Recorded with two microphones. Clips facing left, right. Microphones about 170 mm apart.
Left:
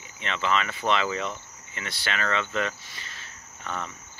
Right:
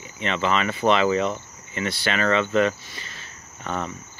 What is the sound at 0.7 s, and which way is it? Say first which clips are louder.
Speech: right 7 dB; 25° right (ahead or behind).